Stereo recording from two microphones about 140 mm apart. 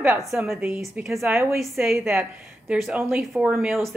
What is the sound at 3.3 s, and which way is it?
Speech, 5° right (ahead or behind).